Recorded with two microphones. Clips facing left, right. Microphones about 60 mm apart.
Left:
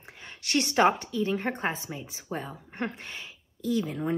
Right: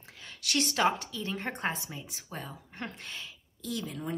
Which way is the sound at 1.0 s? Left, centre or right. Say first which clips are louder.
Left 7 dB; centre.